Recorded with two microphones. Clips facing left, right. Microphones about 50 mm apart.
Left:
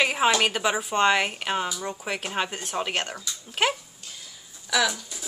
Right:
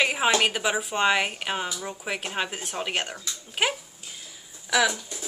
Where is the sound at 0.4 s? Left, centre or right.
Centre.